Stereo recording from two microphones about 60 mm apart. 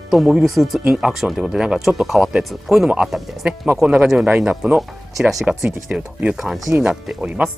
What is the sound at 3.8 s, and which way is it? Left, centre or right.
Speech, centre.